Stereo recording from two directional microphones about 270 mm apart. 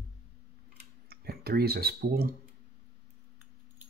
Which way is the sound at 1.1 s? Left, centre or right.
Right.